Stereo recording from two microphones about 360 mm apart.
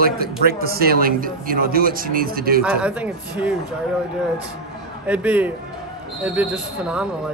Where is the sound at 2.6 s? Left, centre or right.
Centre.